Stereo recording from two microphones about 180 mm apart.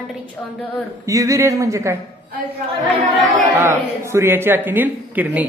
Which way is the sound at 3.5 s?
15° right (ahead or behind).